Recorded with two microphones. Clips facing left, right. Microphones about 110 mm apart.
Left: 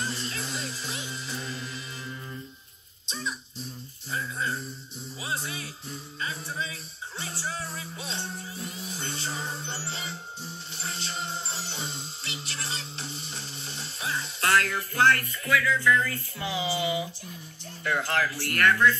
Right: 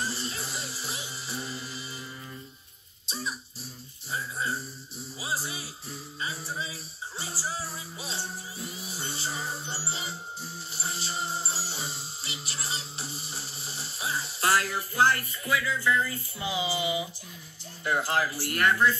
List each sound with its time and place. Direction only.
0.0 s music: 5° right (ahead or behind)
3.1 s a sound: 5° right (ahead or behind)
5.2 s music: 5° right (ahead or behind)
17.8 s speech: 20° right (ahead or behind)